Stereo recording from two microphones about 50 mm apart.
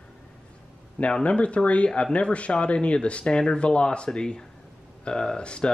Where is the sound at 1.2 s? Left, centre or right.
Left.